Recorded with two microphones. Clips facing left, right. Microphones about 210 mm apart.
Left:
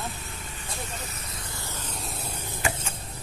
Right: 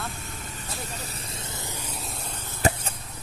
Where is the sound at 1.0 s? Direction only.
25° right (ahead or behind).